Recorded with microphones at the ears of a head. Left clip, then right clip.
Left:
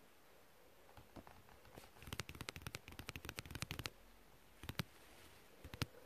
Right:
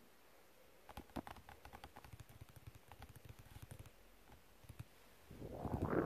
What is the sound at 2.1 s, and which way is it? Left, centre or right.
Machine gun, left.